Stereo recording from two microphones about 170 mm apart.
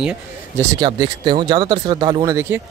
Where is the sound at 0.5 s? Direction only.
20° right (ahead or behind).